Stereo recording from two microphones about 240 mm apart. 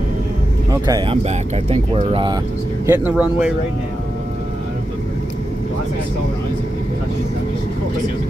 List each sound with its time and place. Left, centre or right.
0.7 s speech: centre
2.9 s speech: centre